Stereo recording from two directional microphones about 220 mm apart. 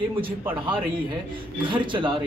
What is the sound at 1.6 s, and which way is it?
Speech, 20° right (ahead or behind).